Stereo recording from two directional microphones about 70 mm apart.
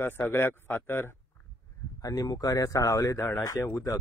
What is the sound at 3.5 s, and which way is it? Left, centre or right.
Speech, left.